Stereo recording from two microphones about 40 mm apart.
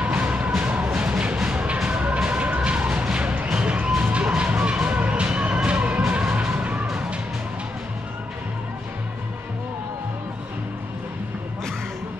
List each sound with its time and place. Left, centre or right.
0.0 s music: right